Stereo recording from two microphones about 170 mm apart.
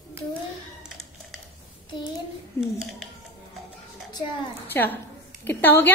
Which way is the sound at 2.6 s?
Centre (ahead or behind).